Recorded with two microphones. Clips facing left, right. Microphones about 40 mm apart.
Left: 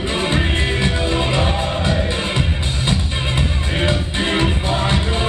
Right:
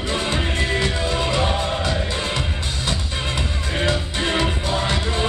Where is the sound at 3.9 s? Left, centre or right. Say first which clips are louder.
Left 2 dB; left.